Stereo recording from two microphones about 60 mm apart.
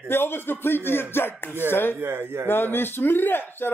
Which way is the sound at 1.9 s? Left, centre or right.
Right.